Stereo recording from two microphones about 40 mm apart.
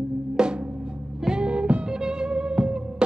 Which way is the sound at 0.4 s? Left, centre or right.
Centre.